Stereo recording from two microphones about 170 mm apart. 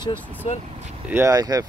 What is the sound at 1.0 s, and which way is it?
Speech, 15° right (ahead or behind).